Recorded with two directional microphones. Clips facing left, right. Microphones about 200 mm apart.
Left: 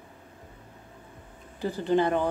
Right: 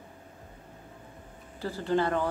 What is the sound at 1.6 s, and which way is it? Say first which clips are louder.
Speech: left 3 dB; 20° left (ahead or behind).